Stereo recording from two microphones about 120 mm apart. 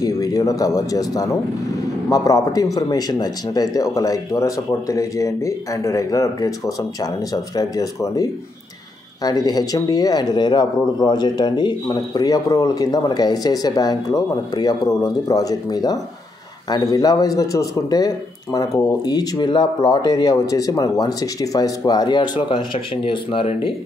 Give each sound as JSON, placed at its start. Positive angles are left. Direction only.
{"t": 0.0, "sound": "a man's voice", "side_deg": 30}